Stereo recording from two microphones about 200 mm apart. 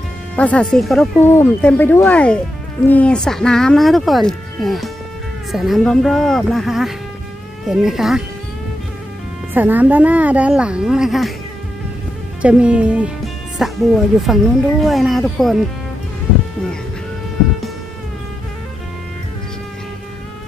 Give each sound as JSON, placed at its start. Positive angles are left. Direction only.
{"t": 0.4, "sound": "speech", "side_deg": 5}
{"t": 9.5, "sound": "speech", "side_deg": -10}
{"t": 12.4, "sound": "speech", "side_deg": -5}